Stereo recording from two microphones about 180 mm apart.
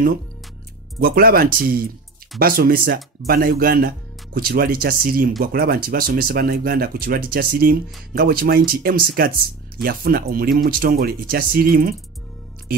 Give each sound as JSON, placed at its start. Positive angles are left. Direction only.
{"t": 1.0, "sound": "speech", "side_deg": -55}